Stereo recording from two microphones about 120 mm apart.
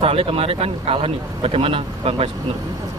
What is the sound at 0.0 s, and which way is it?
Speech, 55° right (ahead or behind).